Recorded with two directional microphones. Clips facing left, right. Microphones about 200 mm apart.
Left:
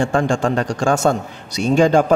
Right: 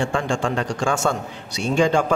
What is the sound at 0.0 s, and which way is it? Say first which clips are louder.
A man's voice: left 5 dB; 40° left (ahead or behind).